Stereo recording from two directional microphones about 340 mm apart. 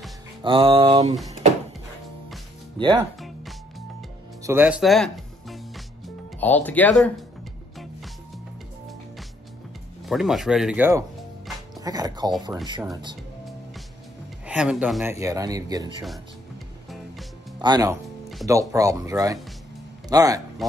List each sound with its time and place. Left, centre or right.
0.4 s speech: centre
2.8 s speech: centre
3.2 s music: centre
6.4 s speech: centre
7.7 s music: centre
10.0 s music: centre
11.8 s speech: centre
14.4 s speech: centre
17.6 s speech: centre